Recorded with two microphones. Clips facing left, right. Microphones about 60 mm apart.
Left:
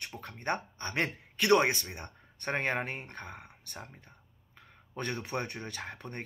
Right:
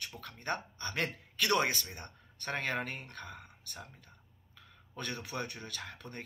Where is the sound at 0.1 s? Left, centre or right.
Left.